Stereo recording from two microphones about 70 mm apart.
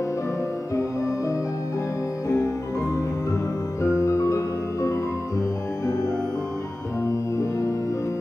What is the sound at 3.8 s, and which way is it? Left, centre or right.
Music, left.